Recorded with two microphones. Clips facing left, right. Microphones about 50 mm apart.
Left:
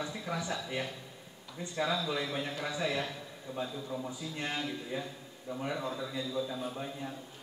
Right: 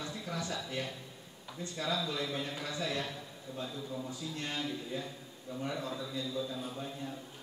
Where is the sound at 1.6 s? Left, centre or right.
Centre.